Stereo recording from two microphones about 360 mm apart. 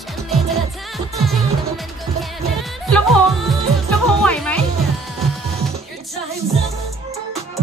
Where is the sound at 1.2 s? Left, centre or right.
Centre.